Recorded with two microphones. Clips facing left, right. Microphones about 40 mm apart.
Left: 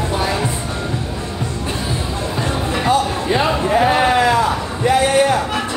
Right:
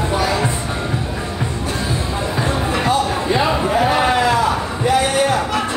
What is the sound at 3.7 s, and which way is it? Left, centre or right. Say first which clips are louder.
Sheep: left 3 dB; centre.